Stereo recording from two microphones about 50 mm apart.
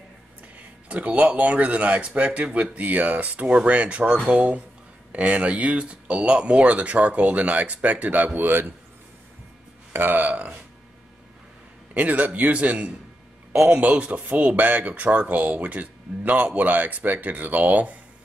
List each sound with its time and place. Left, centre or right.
0.8 s speech: right
9.9 s speech: right
11.9 s speech: right